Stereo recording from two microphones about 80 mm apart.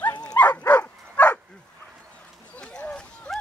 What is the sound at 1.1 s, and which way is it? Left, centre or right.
Bow-wow, centre.